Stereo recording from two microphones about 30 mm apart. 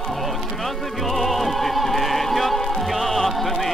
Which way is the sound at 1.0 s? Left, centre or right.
Centre.